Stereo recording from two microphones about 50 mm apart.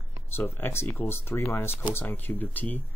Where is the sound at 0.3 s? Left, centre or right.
Left.